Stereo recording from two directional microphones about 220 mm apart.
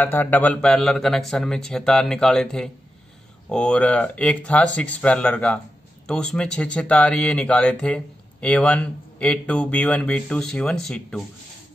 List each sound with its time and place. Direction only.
0.0 s speech: 10° left (ahead or behind)